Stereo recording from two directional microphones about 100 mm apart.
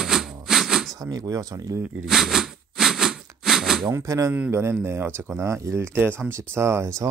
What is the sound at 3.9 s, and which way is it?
Speech, 30° right (ahead or behind).